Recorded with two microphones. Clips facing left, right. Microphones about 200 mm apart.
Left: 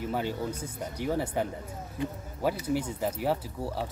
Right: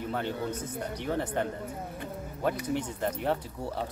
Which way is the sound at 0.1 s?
10° left (ahead or behind).